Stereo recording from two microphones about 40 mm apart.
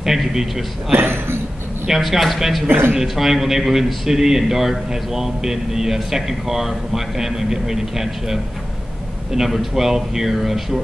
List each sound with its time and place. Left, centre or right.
0.0 s a man's voice: centre
0.9 s speech: right
1.9 s a man's voice: centre